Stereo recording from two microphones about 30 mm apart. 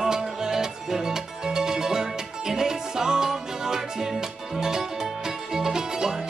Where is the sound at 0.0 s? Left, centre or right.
Centre.